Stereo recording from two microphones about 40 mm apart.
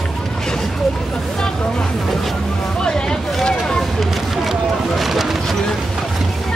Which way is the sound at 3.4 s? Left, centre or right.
Centre.